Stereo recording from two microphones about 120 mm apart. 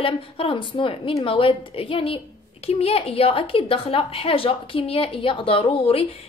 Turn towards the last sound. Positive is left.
turn(degrees=50)  # may be behind; listen again after turning